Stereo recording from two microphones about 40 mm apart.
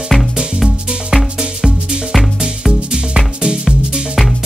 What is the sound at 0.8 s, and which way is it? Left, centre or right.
Music, centre.